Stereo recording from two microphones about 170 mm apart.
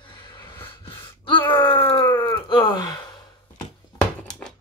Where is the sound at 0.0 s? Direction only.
30° left (ahead or behind).